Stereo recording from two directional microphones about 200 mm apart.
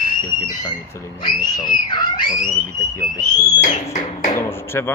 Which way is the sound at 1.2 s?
20° left (ahead or behind).